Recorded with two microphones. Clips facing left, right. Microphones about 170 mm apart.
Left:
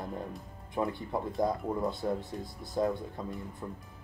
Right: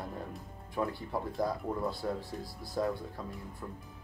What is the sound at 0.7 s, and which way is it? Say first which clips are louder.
Speech: left 2 dB; 20° left (ahead or behind).